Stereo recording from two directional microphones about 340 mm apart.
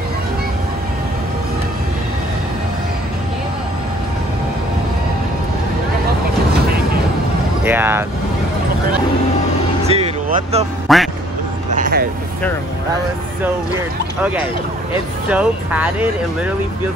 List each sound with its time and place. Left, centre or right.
7.6 s vehicle: centre
9.8 s vehicle: centre
10.9 s speech: centre
11.7 s vehicle: right
14.2 s speech: centre